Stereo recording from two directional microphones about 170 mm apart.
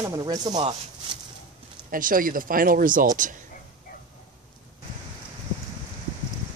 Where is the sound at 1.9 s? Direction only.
55° right (ahead or behind).